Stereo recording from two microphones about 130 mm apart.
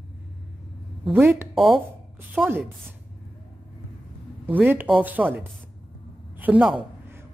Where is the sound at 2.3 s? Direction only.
15° right (ahead or behind).